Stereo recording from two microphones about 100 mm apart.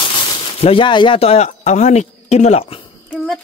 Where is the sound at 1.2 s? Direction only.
90° left.